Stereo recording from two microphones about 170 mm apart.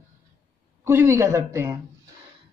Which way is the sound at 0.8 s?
15° right (ahead or behind).